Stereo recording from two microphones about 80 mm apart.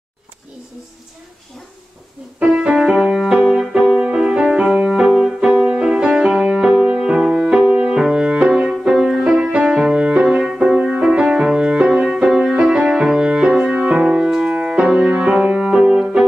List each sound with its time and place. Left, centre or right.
2.4 s music: centre
9.5 s music: centre